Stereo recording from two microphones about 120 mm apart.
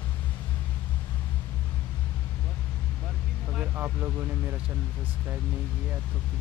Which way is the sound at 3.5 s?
20° right (ahead or behind).